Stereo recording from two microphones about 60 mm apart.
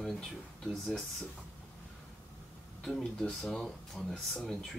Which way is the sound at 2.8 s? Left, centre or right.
Centre.